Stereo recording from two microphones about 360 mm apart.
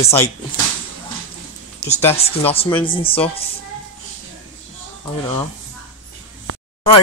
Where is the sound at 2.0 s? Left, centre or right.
Centre.